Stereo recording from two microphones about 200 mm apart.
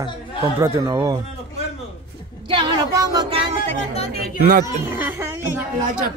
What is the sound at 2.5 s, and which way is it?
Speech, 20° right (ahead or behind).